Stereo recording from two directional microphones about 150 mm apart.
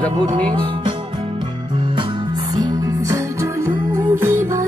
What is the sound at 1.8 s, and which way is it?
Music, 30° right (ahead or behind).